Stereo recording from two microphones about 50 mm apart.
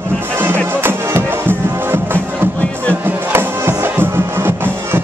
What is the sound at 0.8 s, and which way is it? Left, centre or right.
Music, right.